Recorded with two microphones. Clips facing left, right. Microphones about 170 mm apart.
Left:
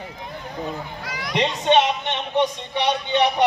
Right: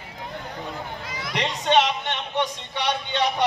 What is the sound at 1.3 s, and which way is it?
Speech, 20° left (ahead or behind).